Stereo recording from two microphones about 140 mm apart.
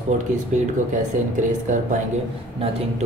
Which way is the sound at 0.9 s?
60° right (ahead or behind).